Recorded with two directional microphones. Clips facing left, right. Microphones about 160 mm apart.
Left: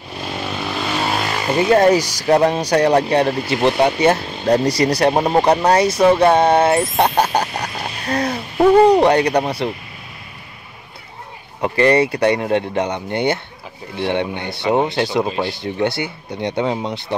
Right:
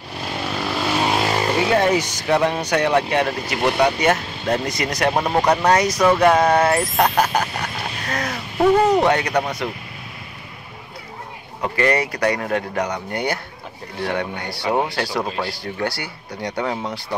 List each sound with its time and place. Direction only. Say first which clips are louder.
0.6 s vehicle: right 2 dB; 10° right (ahead or behind)
1.8 s speech: left 5 dB; 35° left (ahead or behind)
11.6 s speech: left 5 dB; 30° left (ahead or behind)